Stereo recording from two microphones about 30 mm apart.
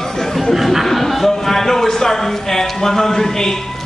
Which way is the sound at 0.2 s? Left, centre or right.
Centre.